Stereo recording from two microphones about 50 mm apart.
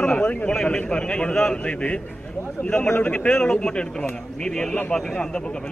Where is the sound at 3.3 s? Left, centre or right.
Centre.